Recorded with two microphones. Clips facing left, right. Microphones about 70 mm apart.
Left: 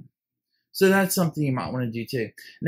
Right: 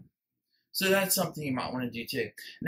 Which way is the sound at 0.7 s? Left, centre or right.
Left.